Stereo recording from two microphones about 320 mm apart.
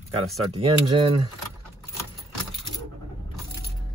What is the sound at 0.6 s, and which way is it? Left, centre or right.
Speech, centre.